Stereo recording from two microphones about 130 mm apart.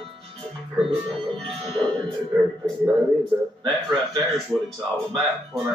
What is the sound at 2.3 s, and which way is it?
Speech, 20° right (ahead or behind).